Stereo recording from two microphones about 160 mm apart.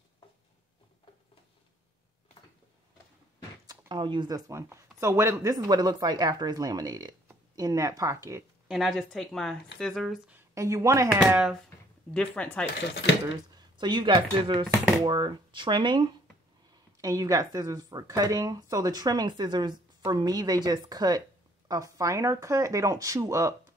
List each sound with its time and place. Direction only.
3.6 s speech: 30° right (ahead or behind)
8.6 s a woman's voice: centre (ahead or behind)
10.5 s speech: 20° right (ahead or behind)
11.2 s speech: 10° right (ahead or behind)
12.1 s speech: 5° left (ahead or behind)
13.6 s speech: 30° right (ahead or behind)